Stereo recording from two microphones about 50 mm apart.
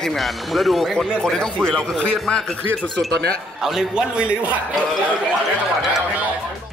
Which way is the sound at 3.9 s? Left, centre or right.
Right.